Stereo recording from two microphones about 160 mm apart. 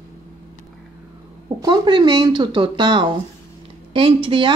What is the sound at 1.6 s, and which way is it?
Speech, 25° right (ahead or behind).